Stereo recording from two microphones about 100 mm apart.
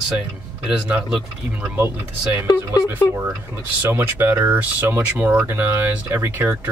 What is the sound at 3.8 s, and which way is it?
Speech, 25° right (ahead or behind).